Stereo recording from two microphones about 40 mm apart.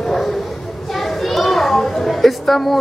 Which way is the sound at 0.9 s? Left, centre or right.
Centre.